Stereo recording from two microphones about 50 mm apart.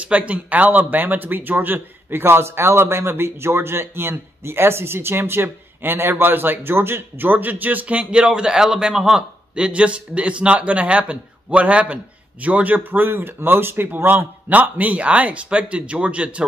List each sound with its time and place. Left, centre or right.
0.0 s speech: right
8.0 s a man's voice: right
9.7 s a man's voice: right